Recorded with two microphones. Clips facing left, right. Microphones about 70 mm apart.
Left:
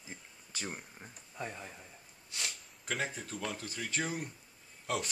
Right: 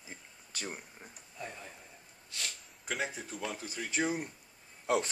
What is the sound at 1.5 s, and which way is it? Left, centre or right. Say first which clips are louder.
Speech: left 2 dB; centre.